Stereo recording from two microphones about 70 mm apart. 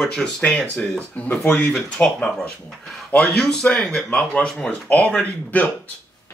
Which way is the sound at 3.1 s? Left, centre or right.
Centre.